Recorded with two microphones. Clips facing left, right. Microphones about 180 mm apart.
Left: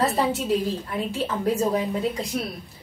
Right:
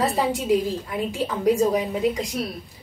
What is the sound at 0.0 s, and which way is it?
A woman's voice, 15° right (ahead or behind).